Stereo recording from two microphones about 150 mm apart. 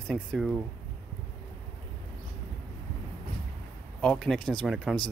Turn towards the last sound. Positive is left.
turn(degrees=5)  # may be behind; listen again after turning